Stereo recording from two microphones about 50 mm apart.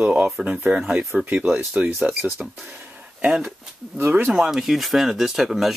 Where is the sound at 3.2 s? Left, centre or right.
Centre.